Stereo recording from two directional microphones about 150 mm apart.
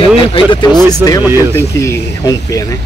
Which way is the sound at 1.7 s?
20° left (ahead or behind).